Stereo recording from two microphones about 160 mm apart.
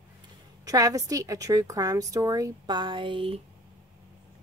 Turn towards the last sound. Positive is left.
turn(degrees=-35)  # may be behind; listen again after turning